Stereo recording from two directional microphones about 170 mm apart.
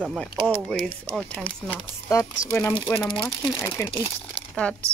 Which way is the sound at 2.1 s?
20° left (ahead or behind).